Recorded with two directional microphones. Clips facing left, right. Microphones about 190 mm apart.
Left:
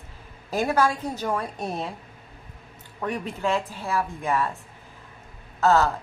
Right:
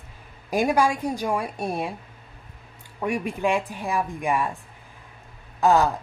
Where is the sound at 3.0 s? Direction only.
10° right (ahead or behind).